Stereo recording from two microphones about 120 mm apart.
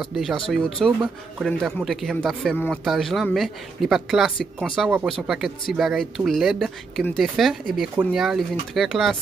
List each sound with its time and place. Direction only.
0.0 s speech: centre (ahead or behind)